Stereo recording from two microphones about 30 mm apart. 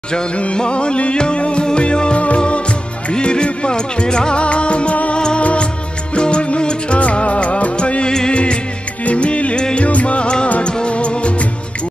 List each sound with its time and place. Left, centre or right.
0.6 s music: left
4.4 s music: left
5.4 s music of bollywood: left
6.1 s music: left
7.0 s music: left
9.6 s music: left
9.8 s music: left